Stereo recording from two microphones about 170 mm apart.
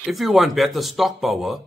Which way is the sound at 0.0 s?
Centre (ahead or behind).